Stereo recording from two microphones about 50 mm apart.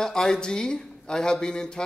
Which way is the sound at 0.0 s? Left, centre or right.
Centre.